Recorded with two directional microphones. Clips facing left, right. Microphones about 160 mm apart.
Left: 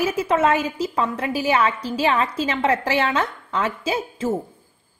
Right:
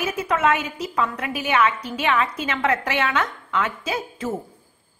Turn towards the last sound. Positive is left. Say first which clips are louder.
# left 3 dB
turn(degrees=30)  # may be behind; listen again after turning